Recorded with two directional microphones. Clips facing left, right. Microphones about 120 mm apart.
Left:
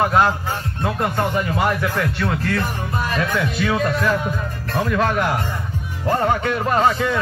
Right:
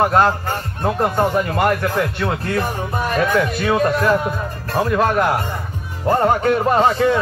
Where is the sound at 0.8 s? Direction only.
25° right (ahead or behind).